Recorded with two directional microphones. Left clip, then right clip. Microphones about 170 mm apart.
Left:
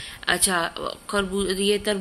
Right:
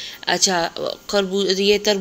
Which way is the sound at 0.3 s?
15° right (ahead or behind).